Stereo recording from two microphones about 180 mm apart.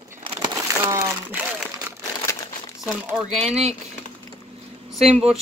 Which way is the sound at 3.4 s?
35° right (ahead or behind).